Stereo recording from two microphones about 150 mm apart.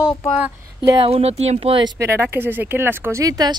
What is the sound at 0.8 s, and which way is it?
Speech, 30° right (ahead or behind).